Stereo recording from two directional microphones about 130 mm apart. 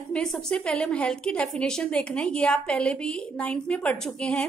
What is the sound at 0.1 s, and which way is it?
A woman's voice, 5° left (ahead or behind).